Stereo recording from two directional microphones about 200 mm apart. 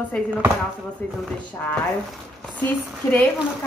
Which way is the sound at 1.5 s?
10° left (ahead or behind).